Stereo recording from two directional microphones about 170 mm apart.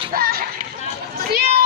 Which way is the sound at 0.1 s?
60° right (ahead or behind).